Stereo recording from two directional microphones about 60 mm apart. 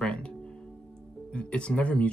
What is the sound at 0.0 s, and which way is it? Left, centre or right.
Music, centre.